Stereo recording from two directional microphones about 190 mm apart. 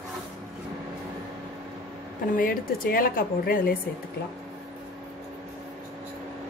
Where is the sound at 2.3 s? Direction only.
50° left (ahead or behind).